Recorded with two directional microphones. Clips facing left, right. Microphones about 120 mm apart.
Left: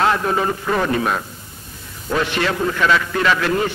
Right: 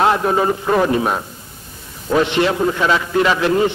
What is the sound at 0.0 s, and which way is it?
A man's voice, 20° right (ahead or behind).